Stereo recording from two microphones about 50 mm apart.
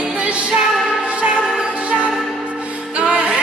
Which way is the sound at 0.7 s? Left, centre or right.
Centre.